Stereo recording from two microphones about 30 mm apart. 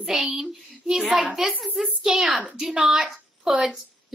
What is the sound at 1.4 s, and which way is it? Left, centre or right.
A woman's voice, centre.